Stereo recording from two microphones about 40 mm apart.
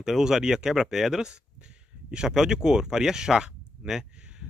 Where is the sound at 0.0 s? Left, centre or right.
Centre.